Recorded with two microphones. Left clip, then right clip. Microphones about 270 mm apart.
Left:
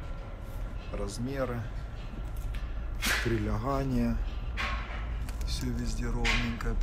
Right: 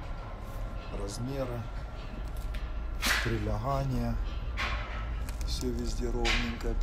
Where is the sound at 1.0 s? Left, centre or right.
Centre.